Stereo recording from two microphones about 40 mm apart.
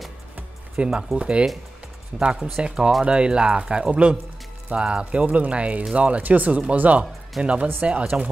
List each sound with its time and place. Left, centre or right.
0.7 s speech: right
5.2 s speech: right
7.3 s speech: centre
7.8 s speech: right